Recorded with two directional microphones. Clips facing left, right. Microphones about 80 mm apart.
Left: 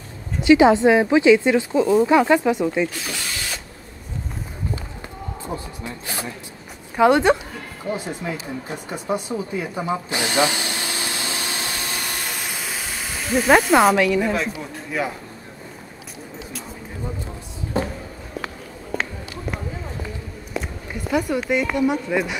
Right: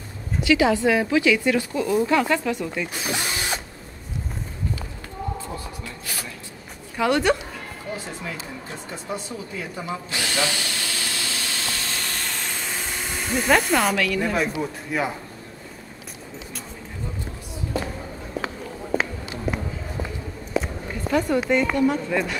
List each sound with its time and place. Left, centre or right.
0.4 s speech: left
2.9 s mechanisms: right
5.4 s a sound: left
7.0 s speech: left
8.9 s drill: left; by 13.5 s centre
13.9 s speech: left
14.3 s speech: centre
18.4 s a sound: centre
21.1 s speech: centre